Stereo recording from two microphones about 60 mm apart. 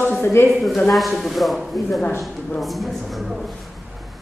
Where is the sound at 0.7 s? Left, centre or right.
Centre.